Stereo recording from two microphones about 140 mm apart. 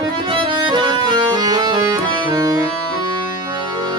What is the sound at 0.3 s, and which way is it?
Accordion, 35° right (ahead or behind).